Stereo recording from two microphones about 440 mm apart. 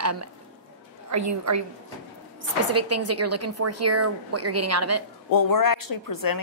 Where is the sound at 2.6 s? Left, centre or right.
Right.